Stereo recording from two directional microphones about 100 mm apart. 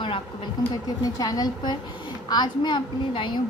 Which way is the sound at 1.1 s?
40° left (ahead or behind).